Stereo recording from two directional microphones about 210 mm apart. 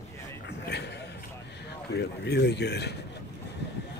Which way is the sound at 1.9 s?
55° left (ahead or behind).